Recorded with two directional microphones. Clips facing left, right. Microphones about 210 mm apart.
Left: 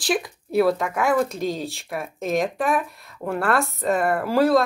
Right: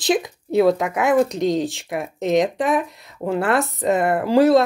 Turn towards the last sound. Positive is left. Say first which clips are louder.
# right 4 dB
turn(degrees=-20)  # may be behind; listen again after turning